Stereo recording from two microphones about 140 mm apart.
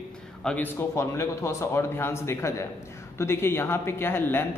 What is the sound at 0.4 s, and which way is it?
Speech, 5° left (ahead or behind).